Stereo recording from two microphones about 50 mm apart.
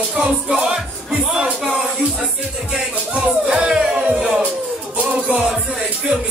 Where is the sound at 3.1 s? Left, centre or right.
Centre.